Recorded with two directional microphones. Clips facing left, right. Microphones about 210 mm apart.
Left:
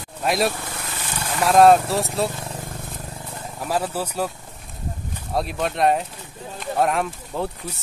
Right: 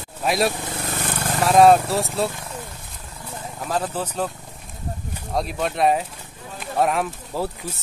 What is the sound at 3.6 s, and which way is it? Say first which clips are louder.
Speech: left 1 dB; 10° left (ahead or behind).